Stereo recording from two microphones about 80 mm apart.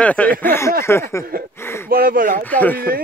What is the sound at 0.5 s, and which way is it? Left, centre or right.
Speech, left.